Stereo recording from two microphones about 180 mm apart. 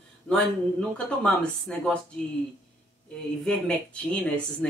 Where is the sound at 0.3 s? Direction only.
5° left (ahead or behind).